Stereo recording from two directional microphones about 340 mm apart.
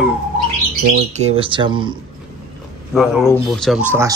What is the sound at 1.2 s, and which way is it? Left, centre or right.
Speech, centre.